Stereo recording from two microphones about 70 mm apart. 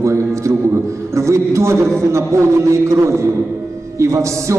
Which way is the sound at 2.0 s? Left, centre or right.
Right.